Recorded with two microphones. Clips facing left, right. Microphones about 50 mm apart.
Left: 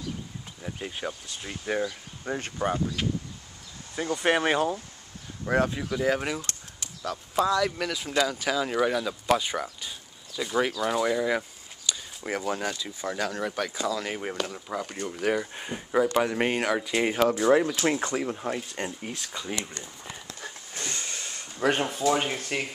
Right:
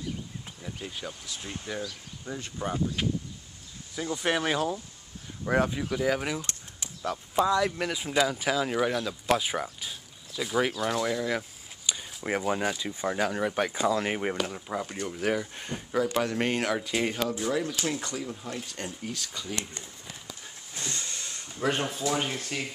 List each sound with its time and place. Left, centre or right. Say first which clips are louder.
0.6 s speech: left 4 dB; centre; by 2.5 s left
4.2 s speech: left 4 dB; left
5.4 s speech: left 1 dB; centre
6.4 s a sound: left 1 dB; centre
7.8 s speech: even; centre
9.4 s a sound: even; centre
10.8 s speech: left 3 dB; centre
11.8 s speech: even; centre
14.3 s speech: even; centre
17.3 s speech: left 7 dB; left
18.8 s speech: left 2 dB; left
20.7 s vehicle: even; left
21.5 s speech: left 3 dB; left
22.4 s speech: left 3 dB; left